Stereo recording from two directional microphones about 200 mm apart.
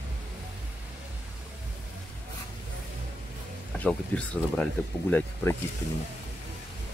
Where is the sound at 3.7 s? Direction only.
5° left (ahead or behind).